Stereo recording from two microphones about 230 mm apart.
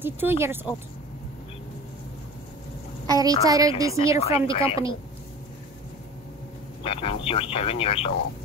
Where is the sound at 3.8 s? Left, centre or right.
Left.